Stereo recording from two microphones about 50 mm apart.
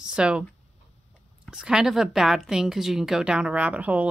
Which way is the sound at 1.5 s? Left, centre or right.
Centre.